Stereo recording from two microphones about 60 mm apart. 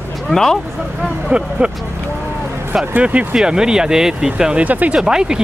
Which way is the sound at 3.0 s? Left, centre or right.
Right.